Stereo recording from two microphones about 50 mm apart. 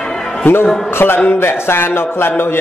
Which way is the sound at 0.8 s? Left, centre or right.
Left.